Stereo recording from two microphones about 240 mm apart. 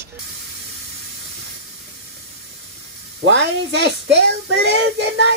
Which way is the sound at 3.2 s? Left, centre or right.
Right.